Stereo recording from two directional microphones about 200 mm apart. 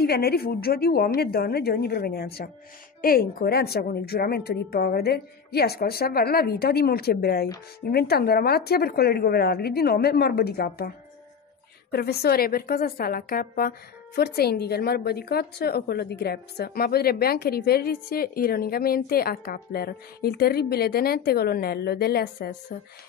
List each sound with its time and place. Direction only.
0.0 s a woman's voice: 50° left (ahead or behind)
11.9 s a woman's voice: 50° left (ahead or behind)